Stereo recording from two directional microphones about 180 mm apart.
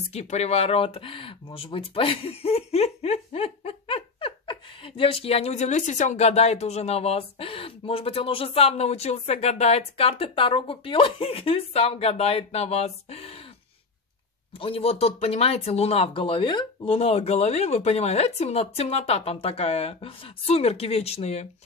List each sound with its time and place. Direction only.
0.1 s speech: 35° left (ahead or behind)
14.6 s speech: 30° left (ahead or behind)